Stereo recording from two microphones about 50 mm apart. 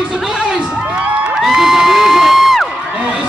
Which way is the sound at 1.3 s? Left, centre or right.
Centre.